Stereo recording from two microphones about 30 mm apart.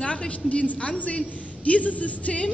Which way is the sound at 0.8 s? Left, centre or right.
Left.